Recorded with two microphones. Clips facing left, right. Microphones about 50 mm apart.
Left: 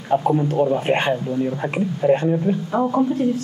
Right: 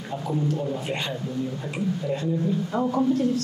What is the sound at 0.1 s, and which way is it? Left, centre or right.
A man's voice, left.